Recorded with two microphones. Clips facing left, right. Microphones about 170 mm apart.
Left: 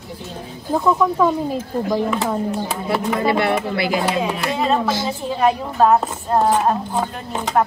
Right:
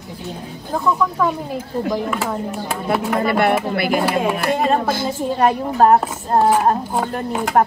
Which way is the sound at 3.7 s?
55° right (ahead or behind).